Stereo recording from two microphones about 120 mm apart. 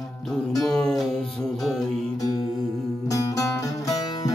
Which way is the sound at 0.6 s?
5° left (ahead or behind).